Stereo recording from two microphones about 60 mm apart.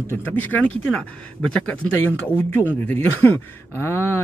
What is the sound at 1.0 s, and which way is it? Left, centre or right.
Speech, centre.